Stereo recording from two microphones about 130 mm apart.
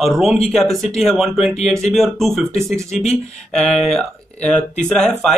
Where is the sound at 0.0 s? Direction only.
Centre (ahead or behind).